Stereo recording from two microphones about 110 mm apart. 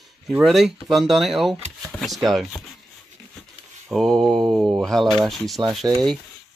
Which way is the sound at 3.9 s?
5° left (ahead or behind).